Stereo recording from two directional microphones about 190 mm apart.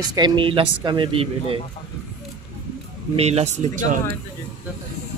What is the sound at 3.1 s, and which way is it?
Speech, 35° right (ahead or behind).